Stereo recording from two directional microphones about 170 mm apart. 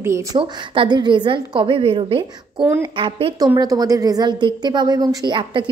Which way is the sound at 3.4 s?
20° right (ahead or behind).